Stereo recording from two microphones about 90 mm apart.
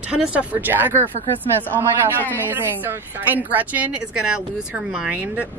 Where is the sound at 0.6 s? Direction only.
20° right (ahead or behind).